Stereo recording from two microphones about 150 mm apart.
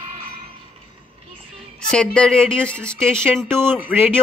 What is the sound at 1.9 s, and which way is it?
A woman's voice, 5° left (ahead or behind).